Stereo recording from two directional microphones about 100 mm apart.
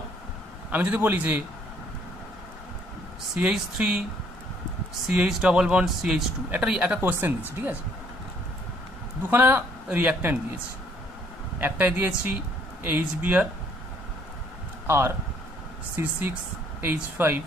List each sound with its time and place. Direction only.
0.7 s speech: 15° right (ahead or behind)
3.3 s speech: 10° right (ahead or behind)
5.0 s speech: 10° right (ahead or behind)
9.3 s a man's voice: 20° right (ahead or behind)
11.5 s speech: 20° right (ahead or behind)
14.9 s a man's voice: 25° right (ahead or behind)